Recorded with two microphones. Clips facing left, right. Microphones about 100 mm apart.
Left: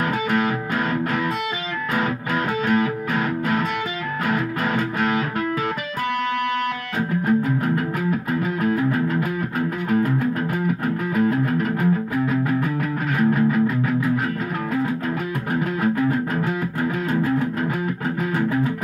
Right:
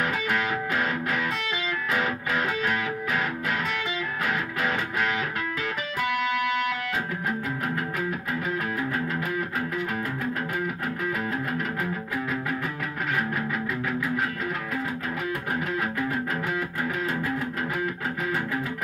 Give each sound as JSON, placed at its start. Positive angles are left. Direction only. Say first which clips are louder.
{"t": 2.6, "sound": "music", "louder": "left 7 dB", "side_deg": 40}
{"t": 4.6, "sound": "music", "louder": "left 4 dB", "side_deg": 40}